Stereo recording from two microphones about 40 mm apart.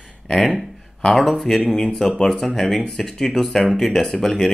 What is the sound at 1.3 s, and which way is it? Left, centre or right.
Speech, centre.